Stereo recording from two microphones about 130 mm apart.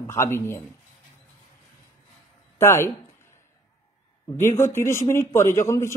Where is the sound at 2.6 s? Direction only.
20° left (ahead or behind).